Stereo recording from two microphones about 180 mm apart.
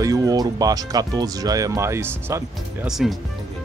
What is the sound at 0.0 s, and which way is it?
Speech, 20° right (ahead or behind).